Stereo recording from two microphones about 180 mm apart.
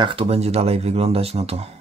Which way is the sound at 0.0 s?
30° right (ahead or behind).